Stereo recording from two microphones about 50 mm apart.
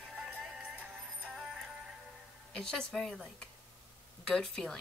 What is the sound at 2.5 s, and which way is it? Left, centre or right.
Speech, centre.